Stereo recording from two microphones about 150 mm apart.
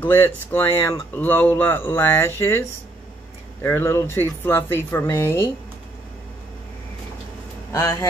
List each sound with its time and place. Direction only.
0.0 s speech: 10° left (ahead or behind)
3.6 s speech: 15° left (ahead or behind)
7.7 s speech: 20° left (ahead or behind)